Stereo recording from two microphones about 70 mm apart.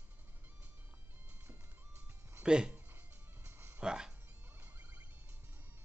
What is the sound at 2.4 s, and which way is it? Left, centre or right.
Speech, centre.